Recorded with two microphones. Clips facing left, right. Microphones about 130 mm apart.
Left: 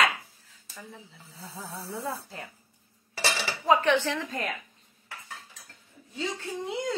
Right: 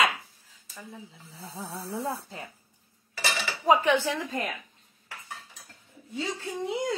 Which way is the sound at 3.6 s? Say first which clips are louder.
Right 1 dB; 10° right (ahead or behind).